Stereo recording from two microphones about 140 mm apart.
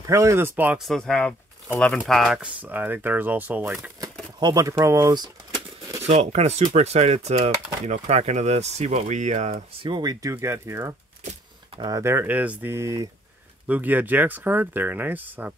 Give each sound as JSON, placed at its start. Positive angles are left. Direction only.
{"t": 0.0, "sound": "speech", "side_deg": -20}
{"t": 0.7, "sound": "speech", "side_deg": 0}
{"t": 2.4, "sound": "speech", "side_deg": -10}
{"t": 4.4, "sound": "speech", "side_deg": -30}
{"t": 6.0, "sound": "speech", "side_deg": -50}
{"t": 9.8, "sound": "speech", "side_deg": -30}
{"t": 10.3, "sound": "speech", "side_deg": -20}